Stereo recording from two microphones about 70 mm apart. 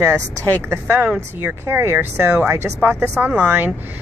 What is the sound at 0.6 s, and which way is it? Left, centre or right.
Speech, right.